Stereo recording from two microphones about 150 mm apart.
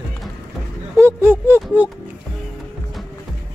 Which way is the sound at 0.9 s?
15° right (ahead or behind).